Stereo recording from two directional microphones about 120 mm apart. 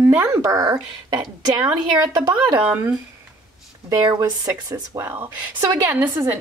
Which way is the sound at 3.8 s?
35° right (ahead or behind).